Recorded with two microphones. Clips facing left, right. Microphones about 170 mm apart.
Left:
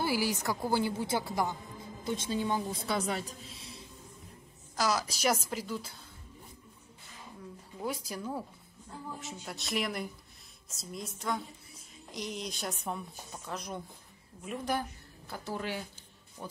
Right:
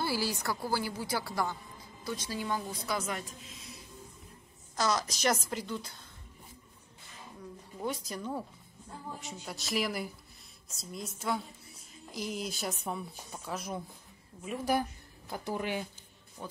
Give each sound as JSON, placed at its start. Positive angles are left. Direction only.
{"t": 0.0, "sound": "a woman's voice", "side_deg": 15}
{"t": 2.9, "sound": "a woman's voice", "side_deg": 35}
{"t": 4.7, "sound": "a woman's voice", "side_deg": 10}
{"t": 7.8, "sound": "a woman's voice", "side_deg": 5}
{"t": 16.4, "sound": "a woman's voice", "side_deg": 5}